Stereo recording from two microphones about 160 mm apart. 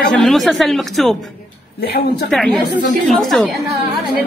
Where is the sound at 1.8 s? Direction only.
90° left.